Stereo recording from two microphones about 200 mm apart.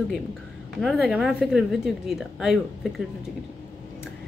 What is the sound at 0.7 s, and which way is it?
A woman's voice, centre (ahead or behind).